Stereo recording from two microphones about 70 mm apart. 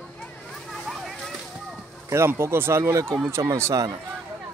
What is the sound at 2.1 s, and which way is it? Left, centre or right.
Speech, right.